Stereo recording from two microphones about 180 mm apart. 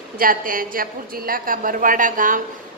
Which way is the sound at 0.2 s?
50° right (ahead or behind).